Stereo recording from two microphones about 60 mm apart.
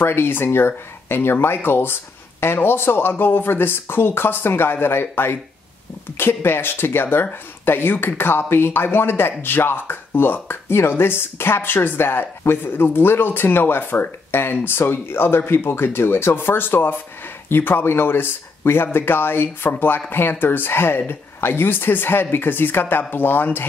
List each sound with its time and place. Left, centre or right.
0.0 s speech: left